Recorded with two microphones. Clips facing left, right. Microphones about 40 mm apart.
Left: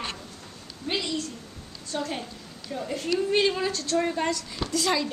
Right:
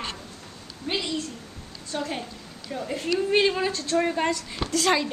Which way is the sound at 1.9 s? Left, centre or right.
Centre.